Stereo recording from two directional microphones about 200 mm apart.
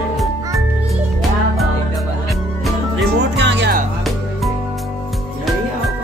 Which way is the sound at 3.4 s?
60° right (ahead or behind).